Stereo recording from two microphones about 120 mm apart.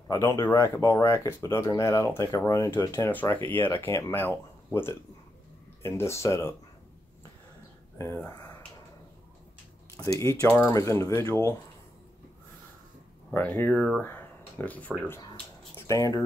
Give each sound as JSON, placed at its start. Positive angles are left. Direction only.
{"t": 0.1, "sound": "speech", "side_deg": 25}
{"t": 3.1, "sound": "speech", "side_deg": 15}
{"t": 9.9, "sound": "speech", "side_deg": 30}
{"t": 13.3, "sound": "speech", "side_deg": 15}
{"t": 15.9, "sound": "speech", "side_deg": 25}